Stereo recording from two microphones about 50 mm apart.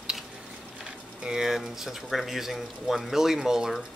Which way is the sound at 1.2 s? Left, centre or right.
Centre.